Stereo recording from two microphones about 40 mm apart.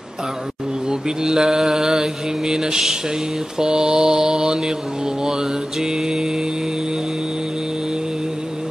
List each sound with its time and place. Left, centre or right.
0.8 s mantra: centre